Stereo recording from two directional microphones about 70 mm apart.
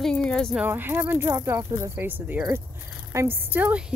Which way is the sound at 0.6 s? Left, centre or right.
Right.